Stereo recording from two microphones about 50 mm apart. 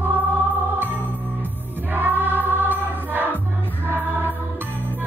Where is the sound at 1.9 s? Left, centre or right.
Right.